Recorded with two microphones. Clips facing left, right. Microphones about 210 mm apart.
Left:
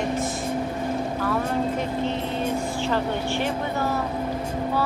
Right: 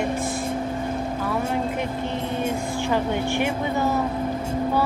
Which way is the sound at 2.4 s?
15° right (ahead or behind).